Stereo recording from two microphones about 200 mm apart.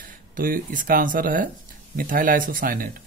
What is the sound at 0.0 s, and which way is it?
Speech, 45° right (ahead or behind).